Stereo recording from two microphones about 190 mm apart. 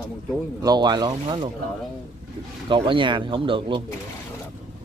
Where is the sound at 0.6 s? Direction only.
20° right (ahead or behind).